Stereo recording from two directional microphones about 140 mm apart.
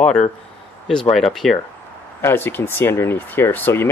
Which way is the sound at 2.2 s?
15° left (ahead or behind).